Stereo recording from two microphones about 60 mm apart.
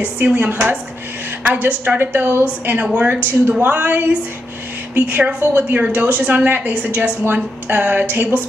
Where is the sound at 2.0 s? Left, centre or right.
Right.